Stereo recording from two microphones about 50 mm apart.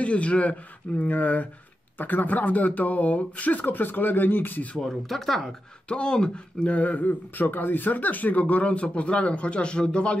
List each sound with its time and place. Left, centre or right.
0.0 s speech: left
4.8 s speech: centre
5.9 s speech: centre